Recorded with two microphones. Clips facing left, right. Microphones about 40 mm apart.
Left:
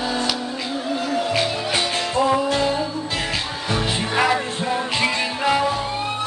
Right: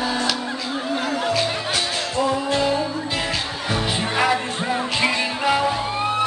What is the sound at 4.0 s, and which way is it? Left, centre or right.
Music, centre.